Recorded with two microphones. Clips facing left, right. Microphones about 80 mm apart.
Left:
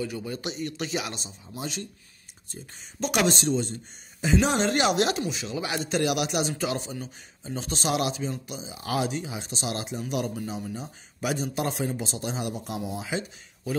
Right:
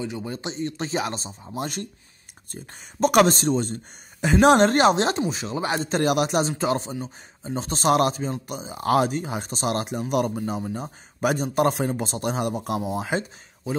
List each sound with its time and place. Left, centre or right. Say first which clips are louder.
0.0 s speech: right 1 dB; right
4.9 s speech: right 2 dB; right